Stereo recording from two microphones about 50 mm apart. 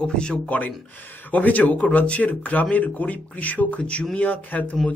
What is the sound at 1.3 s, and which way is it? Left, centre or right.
A man's voice, left.